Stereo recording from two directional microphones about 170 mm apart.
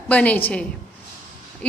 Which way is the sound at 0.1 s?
10° left (ahead or behind).